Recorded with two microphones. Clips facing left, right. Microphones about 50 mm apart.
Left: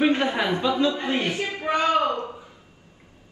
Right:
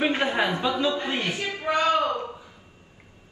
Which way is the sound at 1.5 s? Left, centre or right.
Left.